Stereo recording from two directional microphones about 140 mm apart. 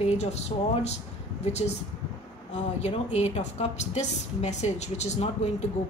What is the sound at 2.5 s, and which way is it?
A woman's voice, 55° left (ahead or behind).